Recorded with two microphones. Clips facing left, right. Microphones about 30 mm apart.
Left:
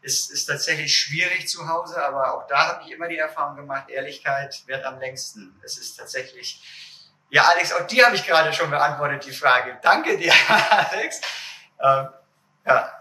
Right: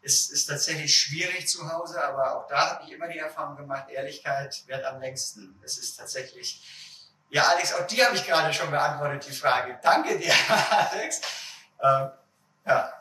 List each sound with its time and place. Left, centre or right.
0.0 s a man's voice: left
11.1 s speech: left